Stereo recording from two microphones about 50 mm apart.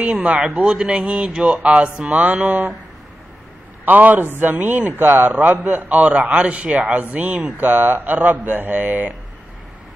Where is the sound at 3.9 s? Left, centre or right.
Right.